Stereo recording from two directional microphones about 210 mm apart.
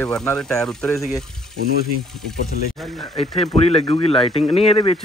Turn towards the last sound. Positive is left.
turn(degrees=25)  # may be behind; listen again after turning